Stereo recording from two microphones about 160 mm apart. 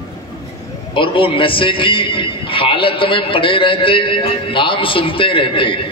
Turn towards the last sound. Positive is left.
turn(degrees=30)  # may be behind; listen again after turning